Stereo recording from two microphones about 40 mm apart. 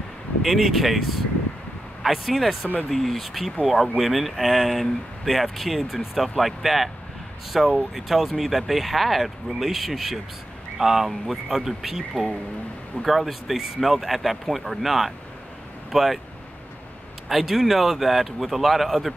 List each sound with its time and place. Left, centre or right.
0.4 s speech: centre
13.0 s speech: centre
17.3 s speech: centre